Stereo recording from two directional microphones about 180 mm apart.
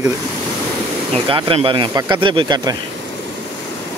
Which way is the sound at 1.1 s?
30° right (ahead or behind).